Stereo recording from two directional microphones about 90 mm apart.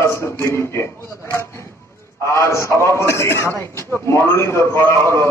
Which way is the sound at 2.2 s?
30° left (ahead or behind).